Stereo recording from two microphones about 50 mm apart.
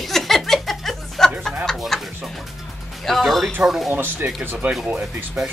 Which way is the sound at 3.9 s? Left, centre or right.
Right.